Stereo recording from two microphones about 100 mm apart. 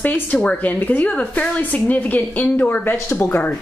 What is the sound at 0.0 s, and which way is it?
A woman's voice, 15° left (ahead or behind).